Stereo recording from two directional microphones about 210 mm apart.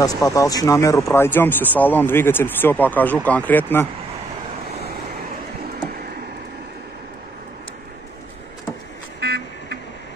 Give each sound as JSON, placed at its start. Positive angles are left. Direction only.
{"t": 0.0, "sound": "speech", "side_deg": 15}
{"t": 9.2, "sound": "vehicle", "side_deg": -50}